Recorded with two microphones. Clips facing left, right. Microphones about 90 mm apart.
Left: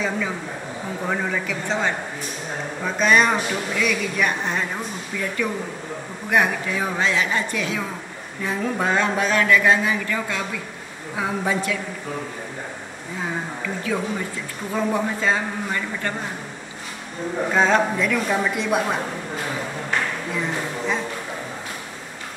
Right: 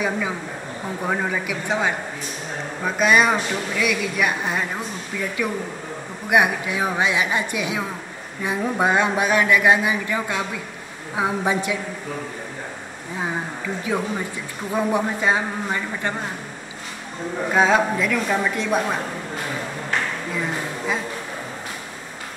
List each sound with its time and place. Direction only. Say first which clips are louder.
1.0 s a woman's voice: right 1 dB; 10° right (ahead or behind)
13.9 s a woman's voice: right 1 dB; 20° right (ahead or behind)
17.5 s a woman's voice: right 1 dB; 5° right (ahead or behind)
20.3 s a sound: left 1 dB; 5° right (ahead or behind)